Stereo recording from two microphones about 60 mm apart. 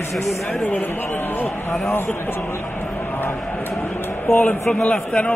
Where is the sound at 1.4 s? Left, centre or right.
Left.